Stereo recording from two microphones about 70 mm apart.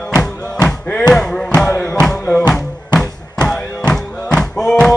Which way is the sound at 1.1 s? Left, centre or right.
Centre.